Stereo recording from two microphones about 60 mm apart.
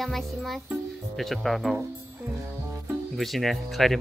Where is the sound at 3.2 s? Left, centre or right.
Centre.